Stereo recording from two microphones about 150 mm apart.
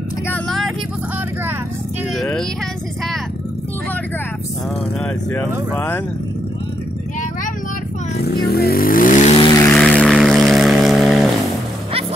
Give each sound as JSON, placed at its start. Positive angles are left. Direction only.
{"t": 0.3, "sound": "vehicle", "side_deg": 0}
{"t": 2.1, "sound": "speech", "side_deg": 5}
{"t": 5.0, "sound": "speech", "side_deg": 10}
{"t": 8.2, "sound": "vehicle", "side_deg": 90}
{"t": 9.4, "sound": "vehicle", "side_deg": 25}
{"t": 9.7, "sound": "vehicle", "side_deg": 5}